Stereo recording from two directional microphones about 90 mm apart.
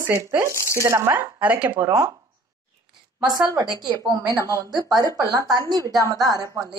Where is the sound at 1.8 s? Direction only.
40° right (ahead or behind).